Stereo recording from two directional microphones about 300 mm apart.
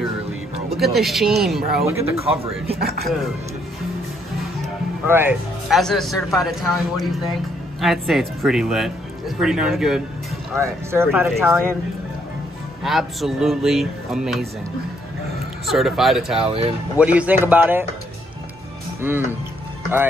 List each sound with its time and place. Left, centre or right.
0.9 s speech: centre
2.8 s speech: right
5.0 s speech: centre
12.8 s speech: centre
15.6 s speech: centre
16.3 s speech: centre
16.9 s speech: centre
18.9 s speech: centre